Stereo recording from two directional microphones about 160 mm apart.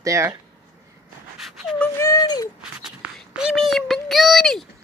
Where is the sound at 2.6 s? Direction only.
5° right (ahead or behind).